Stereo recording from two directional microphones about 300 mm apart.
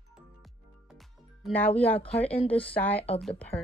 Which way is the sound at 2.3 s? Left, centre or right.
Centre.